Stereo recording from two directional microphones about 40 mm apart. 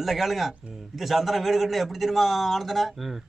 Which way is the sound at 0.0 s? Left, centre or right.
Centre.